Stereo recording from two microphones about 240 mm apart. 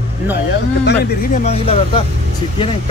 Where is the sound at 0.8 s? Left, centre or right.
Left.